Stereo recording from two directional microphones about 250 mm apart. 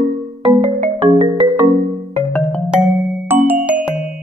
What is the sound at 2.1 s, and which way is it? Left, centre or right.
Music, centre.